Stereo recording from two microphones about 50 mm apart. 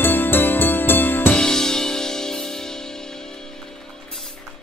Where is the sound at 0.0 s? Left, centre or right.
Left.